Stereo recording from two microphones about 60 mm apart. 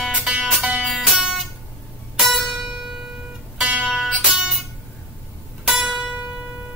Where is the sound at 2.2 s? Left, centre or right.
Centre.